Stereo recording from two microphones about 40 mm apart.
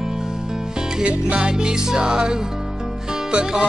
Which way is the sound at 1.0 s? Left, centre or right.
Right.